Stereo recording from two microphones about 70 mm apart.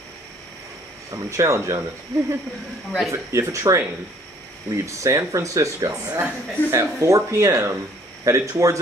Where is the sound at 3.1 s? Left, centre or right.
Right.